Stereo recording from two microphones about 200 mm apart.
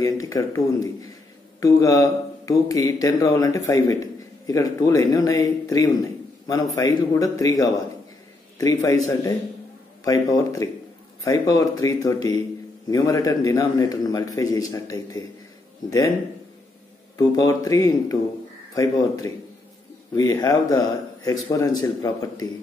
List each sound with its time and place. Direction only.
0.0 s speech: 15° left (ahead or behind)
17.2 s speech: 15° left (ahead or behind)